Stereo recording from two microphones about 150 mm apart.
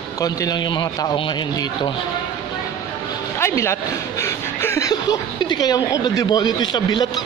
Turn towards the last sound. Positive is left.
turn(degrees=30)  # may be behind; listen again after turning